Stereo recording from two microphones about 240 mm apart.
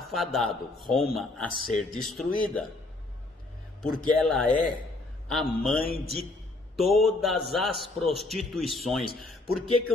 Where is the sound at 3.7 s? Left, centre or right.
Centre.